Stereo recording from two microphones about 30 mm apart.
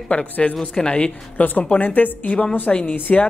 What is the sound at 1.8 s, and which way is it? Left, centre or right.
Speech, left.